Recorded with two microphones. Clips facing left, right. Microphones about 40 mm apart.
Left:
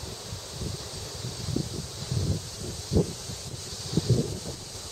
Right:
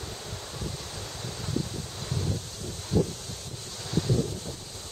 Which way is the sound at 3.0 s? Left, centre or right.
Right.